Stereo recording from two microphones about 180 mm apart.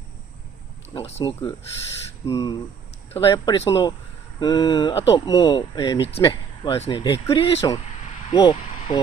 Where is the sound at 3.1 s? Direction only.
30° left (ahead or behind).